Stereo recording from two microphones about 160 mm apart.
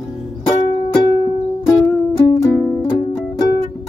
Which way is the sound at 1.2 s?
20° left (ahead or behind).